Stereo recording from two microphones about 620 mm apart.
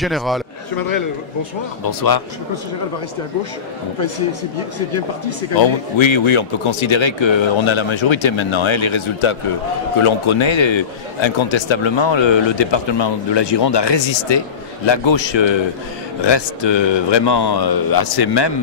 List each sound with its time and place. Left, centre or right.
0.0 s a man's voice: centre
1.9 s speech: left
5.6 s speech: left